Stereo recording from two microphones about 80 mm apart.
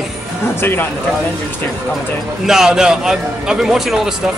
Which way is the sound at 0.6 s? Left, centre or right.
Left.